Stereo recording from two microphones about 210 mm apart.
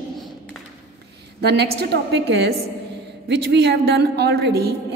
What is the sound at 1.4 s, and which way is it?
A woman's voice, 50° right (ahead or behind).